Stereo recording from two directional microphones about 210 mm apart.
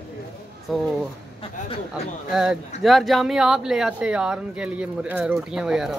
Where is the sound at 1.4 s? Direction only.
25° left (ahead or behind).